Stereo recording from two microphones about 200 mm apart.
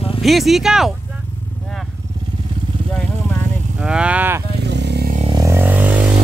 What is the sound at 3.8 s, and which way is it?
Speech, 5° right (ahead or behind).